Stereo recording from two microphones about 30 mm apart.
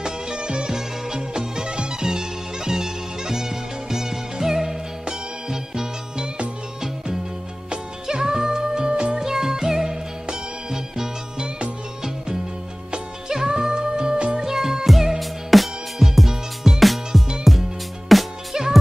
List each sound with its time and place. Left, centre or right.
0.0 s music: right
0.7 s music: right
7.7 s music: right
9.2 s music: centre
13.3 s music: centre
14.4 s music: centre
14.9 s music: centre